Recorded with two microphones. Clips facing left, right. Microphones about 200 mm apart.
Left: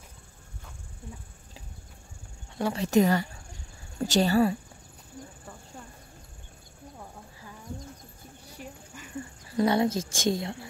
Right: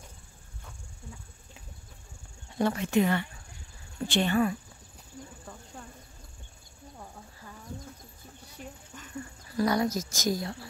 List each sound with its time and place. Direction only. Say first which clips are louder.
2.7 s speech: left 6 dB; 40° left (ahead or behind)
8.5 s dog: left 1 dB; 10° left (ahead or behind)
9.6 s a woman's voice: left 3 dB; 25° left (ahead or behind)